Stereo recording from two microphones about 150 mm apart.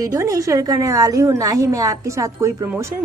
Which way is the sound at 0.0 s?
20° right (ahead or behind).